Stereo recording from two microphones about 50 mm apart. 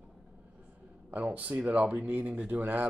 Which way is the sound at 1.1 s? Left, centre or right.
Right.